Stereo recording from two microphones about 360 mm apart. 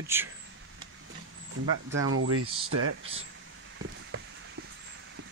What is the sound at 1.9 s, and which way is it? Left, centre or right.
Speech, right.